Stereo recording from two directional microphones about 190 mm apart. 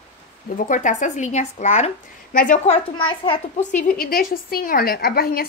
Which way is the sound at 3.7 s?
50° left (ahead or behind).